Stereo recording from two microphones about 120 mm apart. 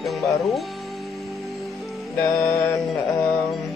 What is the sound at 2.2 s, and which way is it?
Music, 25° left (ahead or behind).